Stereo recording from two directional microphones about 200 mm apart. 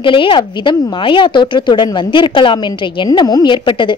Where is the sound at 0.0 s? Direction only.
25° left (ahead or behind).